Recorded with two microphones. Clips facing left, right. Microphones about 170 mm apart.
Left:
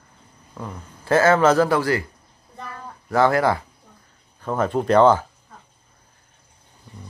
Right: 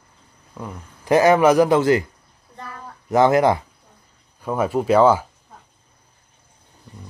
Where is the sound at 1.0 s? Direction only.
15° right (ahead or behind).